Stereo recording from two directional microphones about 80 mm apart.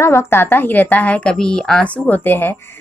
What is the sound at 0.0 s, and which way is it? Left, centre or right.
A woman's voice, left.